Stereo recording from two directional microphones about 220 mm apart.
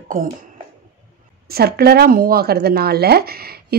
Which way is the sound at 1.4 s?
45° right (ahead or behind).